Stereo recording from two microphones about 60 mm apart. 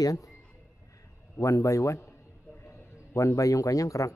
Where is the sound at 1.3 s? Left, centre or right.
Left.